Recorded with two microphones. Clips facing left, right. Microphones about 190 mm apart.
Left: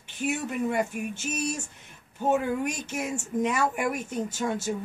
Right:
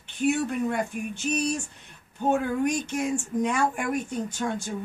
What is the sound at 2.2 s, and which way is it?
Speech, 5° left (ahead or behind).